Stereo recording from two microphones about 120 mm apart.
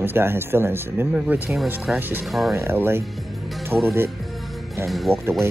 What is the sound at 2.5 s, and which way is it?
Speech, 20° right (ahead or behind).